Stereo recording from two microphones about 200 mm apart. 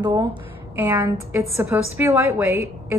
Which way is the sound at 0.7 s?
10° right (ahead or behind).